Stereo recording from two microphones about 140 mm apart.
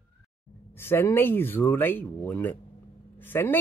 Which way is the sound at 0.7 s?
15° left (ahead or behind).